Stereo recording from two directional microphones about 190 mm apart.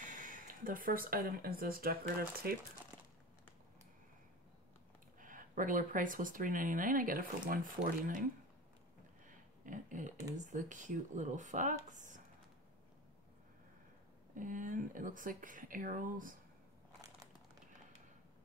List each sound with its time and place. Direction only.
0.0 s speech: 45° right (ahead or behind)
5.2 s speech: 45° right (ahead or behind)
9.7 s speech: 40° right (ahead or behind)
14.3 s speech: 45° right (ahead or behind)